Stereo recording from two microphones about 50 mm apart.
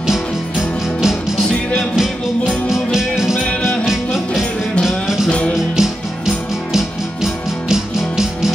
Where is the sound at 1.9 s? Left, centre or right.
Centre.